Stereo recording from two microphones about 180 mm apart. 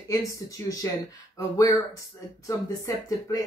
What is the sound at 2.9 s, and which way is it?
Speech, 20° left (ahead or behind).